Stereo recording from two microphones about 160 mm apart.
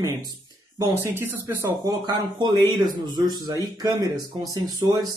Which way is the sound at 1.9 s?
25° right (ahead or behind).